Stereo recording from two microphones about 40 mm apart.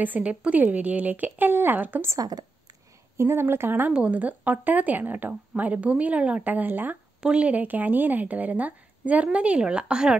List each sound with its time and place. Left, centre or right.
0.0 s speech: right
1.5 s speech: right
3.2 s speech: right
3.9 s speech: right
5.6 s a woman's voice: right
6.4 s speech: right
7.3 s a woman's voice: right
7.6 s a woman's voice: right